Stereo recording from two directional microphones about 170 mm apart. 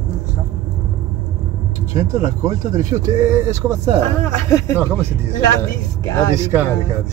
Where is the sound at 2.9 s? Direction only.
15° right (ahead or behind).